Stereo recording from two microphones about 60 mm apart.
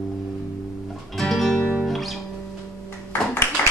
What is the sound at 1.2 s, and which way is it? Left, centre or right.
Music, centre.